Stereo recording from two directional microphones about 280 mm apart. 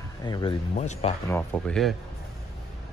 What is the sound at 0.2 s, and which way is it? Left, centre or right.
Speech, centre.